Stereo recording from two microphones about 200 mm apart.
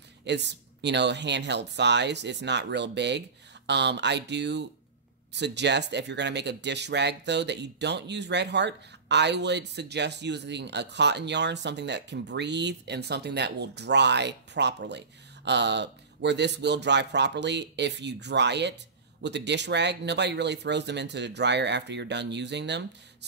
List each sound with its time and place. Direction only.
0.2 s speech: 60° right (ahead or behind)